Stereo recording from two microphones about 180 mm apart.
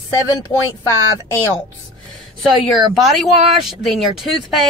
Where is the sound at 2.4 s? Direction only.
Centre (ahead or behind).